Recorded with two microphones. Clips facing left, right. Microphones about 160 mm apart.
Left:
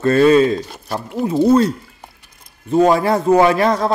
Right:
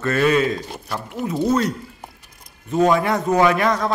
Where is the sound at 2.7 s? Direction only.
35° left (ahead or behind).